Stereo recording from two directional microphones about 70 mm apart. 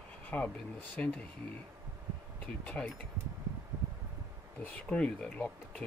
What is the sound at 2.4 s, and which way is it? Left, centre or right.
Speech, centre.